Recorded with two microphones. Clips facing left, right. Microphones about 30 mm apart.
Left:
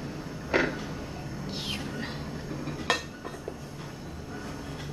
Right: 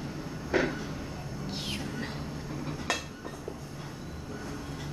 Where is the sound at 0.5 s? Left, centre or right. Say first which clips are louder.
Left 2 dB; left.